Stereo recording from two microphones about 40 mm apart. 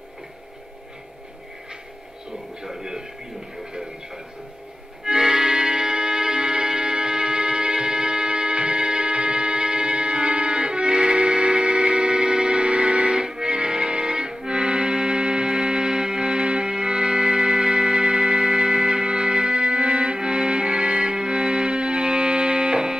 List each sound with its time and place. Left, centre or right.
2.6 s speech: centre
5.0 s music: centre